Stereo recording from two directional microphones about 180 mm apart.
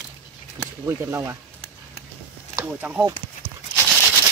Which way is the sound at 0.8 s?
15° right (ahead or behind).